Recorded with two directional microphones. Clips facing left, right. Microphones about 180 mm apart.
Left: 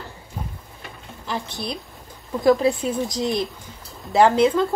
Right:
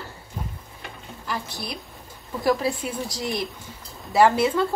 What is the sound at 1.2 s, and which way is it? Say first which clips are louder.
A woman's voice: left 3 dB; 25° left (ahead or behind).